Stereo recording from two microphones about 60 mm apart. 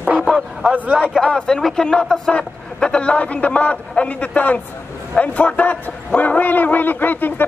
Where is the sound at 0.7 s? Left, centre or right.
Right.